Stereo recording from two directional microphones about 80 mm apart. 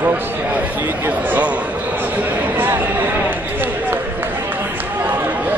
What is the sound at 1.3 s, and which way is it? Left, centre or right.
Speech, centre.